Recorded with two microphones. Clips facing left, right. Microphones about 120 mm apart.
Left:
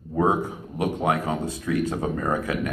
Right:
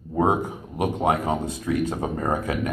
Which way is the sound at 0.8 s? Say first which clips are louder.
Right 1 dB; 25° right (ahead or behind).